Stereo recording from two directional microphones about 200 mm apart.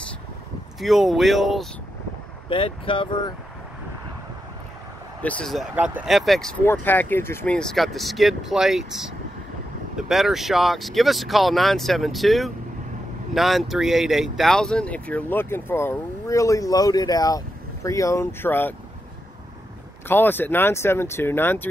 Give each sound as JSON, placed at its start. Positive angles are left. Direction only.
{"t": 0.7, "sound": "speech", "side_deg": 0}
{"t": 2.5, "sound": "speech", "side_deg": 25}
{"t": 5.2, "sound": "speech", "side_deg": 0}
{"t": 6.6, "sound": "speech", "side_deg": 10}
{"t": 20.1, "sound": "speech", "side_deg": 10}